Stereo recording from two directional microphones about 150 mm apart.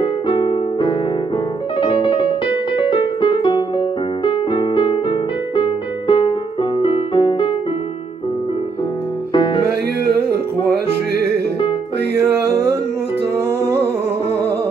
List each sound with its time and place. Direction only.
0.0 s music: 30° left (ahead or behind)
1.8 s keyboard: 35° left (ahead or behind)
4.2 s music: 35° left (ahead or behind)
9.3 s music: 35° left (ahead or behind)
11.1 s music: 90° right
12.3 s music: 15° right (ahead or behind)